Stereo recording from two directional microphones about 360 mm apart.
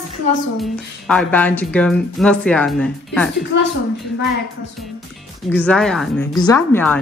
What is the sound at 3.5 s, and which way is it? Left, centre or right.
Speech, left.